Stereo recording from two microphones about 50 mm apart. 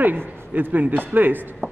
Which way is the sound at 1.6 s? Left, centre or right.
Right.